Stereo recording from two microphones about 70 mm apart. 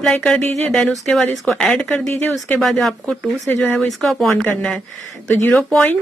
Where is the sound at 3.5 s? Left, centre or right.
Left.